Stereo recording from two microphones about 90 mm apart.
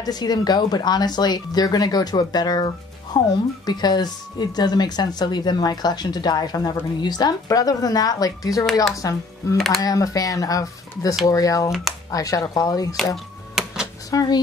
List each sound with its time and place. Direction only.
0.0 s speech: 50° left (ahead or behind)
12.9 s a sound: centre (ahead or behind)
14.1 s speech: 45° left (ahead or behind)